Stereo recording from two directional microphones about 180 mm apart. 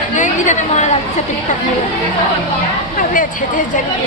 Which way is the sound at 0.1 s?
40° left (ahead or behind).